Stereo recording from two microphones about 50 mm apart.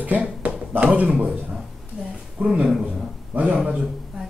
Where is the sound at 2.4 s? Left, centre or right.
Centre.